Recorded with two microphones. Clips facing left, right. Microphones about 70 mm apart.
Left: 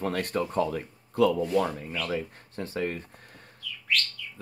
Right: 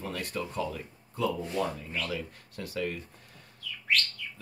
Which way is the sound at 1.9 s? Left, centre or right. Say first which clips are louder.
Left 4 dB; left.